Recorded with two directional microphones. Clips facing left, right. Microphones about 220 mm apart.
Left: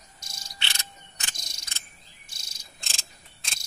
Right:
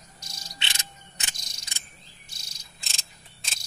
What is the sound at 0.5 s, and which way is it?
Cricket, 20° right (ahead or behind).